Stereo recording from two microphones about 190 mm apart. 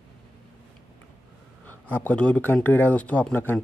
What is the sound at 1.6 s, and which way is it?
Speech, 10° left (ahead or behind).